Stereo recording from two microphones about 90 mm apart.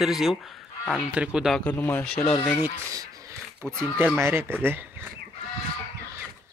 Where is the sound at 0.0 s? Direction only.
Centre (ahead or behind).